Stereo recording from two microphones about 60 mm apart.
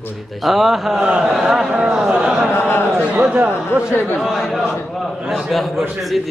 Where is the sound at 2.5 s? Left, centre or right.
Left.